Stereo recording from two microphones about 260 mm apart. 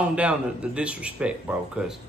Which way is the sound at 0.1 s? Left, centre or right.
Centre.